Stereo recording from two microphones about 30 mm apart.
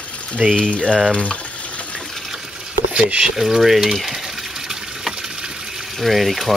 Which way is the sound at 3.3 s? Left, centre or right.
Centre.